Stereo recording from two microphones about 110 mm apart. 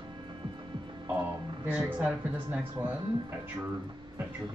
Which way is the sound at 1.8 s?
10° right (ahead or behind).